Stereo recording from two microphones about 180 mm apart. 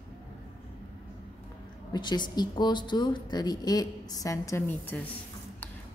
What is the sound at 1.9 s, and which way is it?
A woman's voice, 25° left (ahead or behind).